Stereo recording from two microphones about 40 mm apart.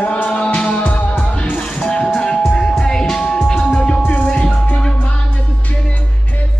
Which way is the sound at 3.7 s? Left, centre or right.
Left.